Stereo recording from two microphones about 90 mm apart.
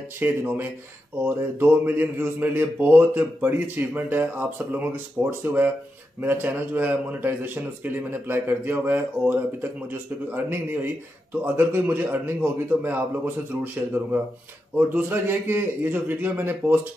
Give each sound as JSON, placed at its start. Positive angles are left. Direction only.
{"t": 0.2, "sound": "speech", "side_deg": -20}